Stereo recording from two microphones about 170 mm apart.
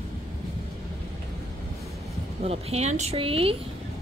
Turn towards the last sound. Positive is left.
turn(degrees=-35)  # may be behind; listen again after turning